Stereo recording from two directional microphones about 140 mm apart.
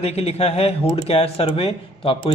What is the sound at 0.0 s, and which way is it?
A man's voice, 45° left (ahead or behind).